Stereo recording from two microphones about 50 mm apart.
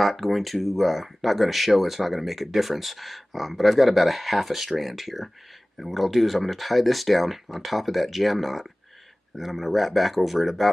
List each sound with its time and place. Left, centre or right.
0.0 s speech: centre